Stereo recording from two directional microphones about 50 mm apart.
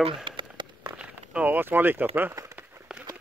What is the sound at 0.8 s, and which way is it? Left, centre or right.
Run, right.